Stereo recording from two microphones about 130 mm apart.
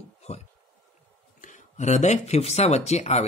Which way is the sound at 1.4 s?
70° left (ahead or behind).